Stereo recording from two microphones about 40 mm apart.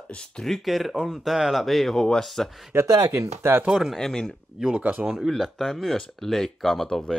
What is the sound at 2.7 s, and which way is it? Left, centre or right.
Speech, right.